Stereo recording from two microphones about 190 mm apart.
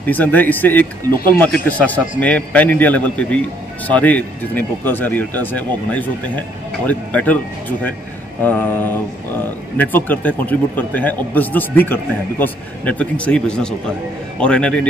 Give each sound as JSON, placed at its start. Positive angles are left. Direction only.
{"t": 0.0, "sound": "speech", "side_deg": 10}
{"t": 8.5, "sound": "a man's voice", "side_deg": 10}